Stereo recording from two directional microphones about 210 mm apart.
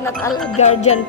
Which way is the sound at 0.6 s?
35° left (ahead or behind).